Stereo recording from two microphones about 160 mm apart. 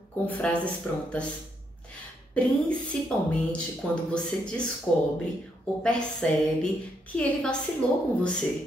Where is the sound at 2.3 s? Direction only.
5° left (ahead or behind).